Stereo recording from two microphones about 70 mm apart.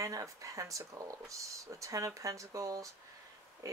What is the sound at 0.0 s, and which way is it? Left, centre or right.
Speech, right.